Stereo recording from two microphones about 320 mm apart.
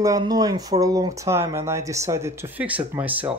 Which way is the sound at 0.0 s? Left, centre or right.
Centre.